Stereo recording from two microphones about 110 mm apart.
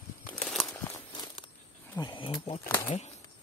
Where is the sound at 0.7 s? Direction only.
25° left (ahead or behind).